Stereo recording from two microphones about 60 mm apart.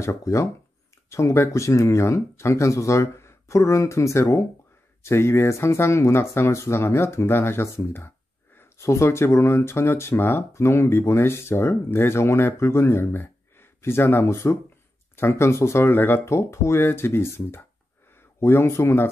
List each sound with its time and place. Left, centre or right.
0.0 s speech: left
16.3 s speech: left